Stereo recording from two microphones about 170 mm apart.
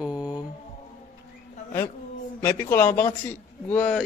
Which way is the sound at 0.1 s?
20° left (ahead or behind).